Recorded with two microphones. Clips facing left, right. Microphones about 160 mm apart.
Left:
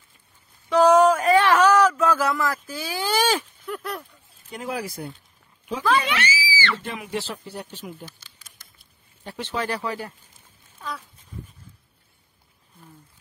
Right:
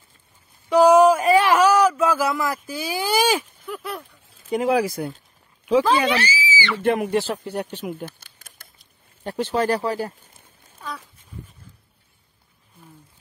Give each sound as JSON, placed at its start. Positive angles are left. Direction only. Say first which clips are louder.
{"t": 0.7, "sound": "a sound", "louder": "right 3 dB", "side_deg": -10}
{"t": 4.5, "sound": "speech", "louder": "right 11 dB", "side_deg": -80}
{"t": 6.0, "sound": "speech", "louder": "right 5 dB", "side_deg": -35}
{"t": 6.4, "sound": "speech", "louder": "right 2 dB", "side_deg": -15}
{"t": 6.8, "sound": "speech", "louder": "right 11 dB", "side_deg": -55}